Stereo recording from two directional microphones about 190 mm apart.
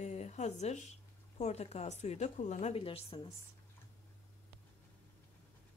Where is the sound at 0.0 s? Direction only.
35° left (ahead or behind).